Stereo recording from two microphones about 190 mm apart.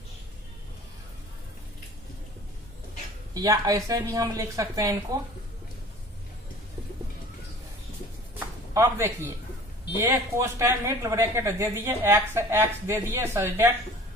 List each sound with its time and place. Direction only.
3.3 s a woman's voice: 20° right (ahead or behind)
8.4 s a sound: 15° right (ahead or behind)
10.0 s a woman's voice: 15° right (ahead or behind)